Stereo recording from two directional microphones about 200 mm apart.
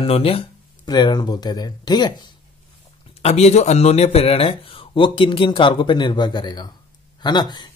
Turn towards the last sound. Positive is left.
turn(degrees=20)  # may be behind; listen again after turning